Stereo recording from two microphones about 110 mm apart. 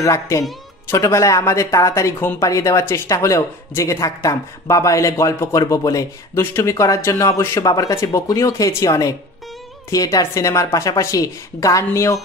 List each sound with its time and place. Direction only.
0.0 s speech: 30° left (ahead or behind)